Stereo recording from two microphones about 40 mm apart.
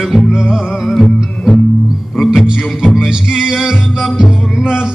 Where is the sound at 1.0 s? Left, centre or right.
Left.